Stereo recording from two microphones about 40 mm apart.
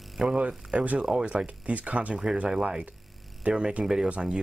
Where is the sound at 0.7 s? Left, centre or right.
Right.